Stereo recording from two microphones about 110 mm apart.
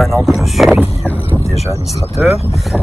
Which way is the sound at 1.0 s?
15° left (ahead or behind).